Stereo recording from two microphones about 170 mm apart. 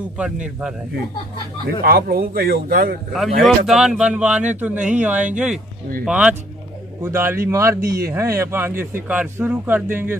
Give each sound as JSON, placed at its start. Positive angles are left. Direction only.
{"t": 0.2, "sound": "speech", "side_deg": -5}
{"t": 1.7, "sound": "a man's voice", "side_deg": -60}
{"t": 3.1, "sound": "speech", "side_deg": 0}